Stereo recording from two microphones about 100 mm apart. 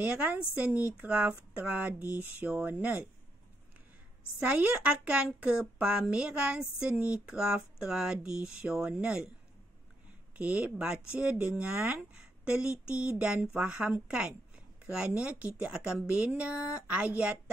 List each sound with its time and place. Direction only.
0.0 s speech: 15° right (ahead or behind)
4.4 s speech: 15° right (ahead or behind)
10.3 s speech: 15° right (ahead or behind)